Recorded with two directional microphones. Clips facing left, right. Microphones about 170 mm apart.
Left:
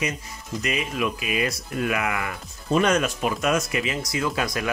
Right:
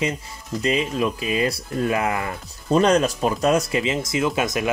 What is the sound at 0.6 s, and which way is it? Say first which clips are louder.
Speech: right 5 dB; 30° right (ahead or behind).